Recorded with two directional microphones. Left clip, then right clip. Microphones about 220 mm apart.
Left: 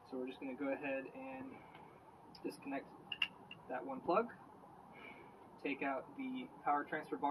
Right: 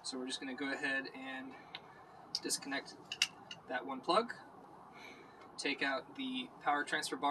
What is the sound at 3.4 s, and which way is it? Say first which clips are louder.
Speech: right 4 dB; 10° right (ahead or behind).